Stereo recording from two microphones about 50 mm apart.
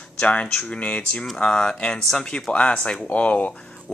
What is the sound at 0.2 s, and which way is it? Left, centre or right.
Speech, left.